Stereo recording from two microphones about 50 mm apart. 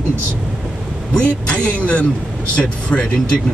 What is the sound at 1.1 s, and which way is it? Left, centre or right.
Speech, left.